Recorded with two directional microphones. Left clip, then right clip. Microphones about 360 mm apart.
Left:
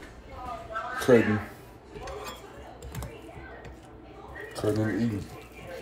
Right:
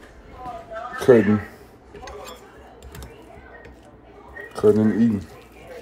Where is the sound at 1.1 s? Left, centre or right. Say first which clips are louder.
Right 6 dB; right.